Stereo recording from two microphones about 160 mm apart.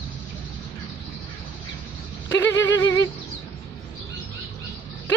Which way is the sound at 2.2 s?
15° left (ahead or behind).